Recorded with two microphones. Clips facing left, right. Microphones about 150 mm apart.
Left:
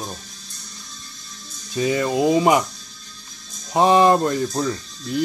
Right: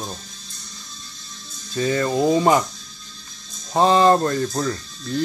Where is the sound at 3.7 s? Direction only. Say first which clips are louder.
Even; 15° left (ahead or behind).